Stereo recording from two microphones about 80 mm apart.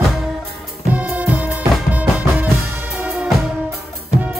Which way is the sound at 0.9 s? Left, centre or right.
Centre.